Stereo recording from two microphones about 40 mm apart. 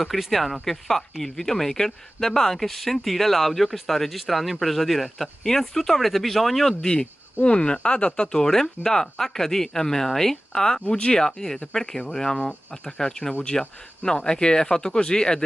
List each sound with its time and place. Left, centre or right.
0.3 s speech: centre
6.8 s speech: centre